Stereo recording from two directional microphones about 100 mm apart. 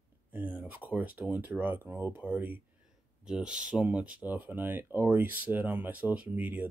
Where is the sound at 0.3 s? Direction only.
15° right (ahead or behind).